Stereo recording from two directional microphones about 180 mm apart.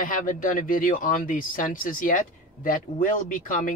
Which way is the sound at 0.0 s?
50° left (ahead or behind).